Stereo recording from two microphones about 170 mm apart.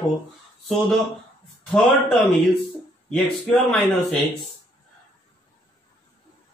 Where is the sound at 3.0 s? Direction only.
Centre (ahead or behind).